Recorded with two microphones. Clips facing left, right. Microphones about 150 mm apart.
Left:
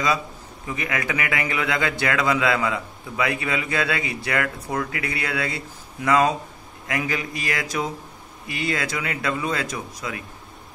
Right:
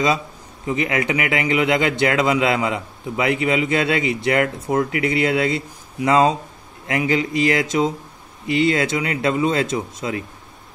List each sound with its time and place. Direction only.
0.7 s a man's voice: 25° right (ahead or behind)